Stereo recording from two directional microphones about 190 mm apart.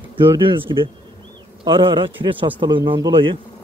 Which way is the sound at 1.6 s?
25° right (ahead or behind).